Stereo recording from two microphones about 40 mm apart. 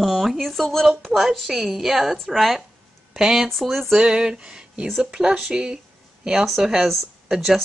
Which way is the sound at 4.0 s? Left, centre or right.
Centre.